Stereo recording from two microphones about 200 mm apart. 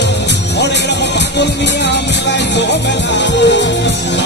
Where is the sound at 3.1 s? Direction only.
60° left (ahead or behind).